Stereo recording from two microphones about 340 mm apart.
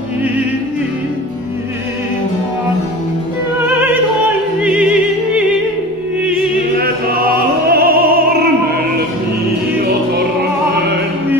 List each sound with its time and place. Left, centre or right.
4.6 s music: centre
7.7 s music: right